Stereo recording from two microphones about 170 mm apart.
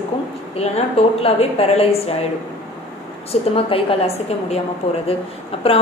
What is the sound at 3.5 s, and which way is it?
A woman's voice, 35° left (ahead or behind).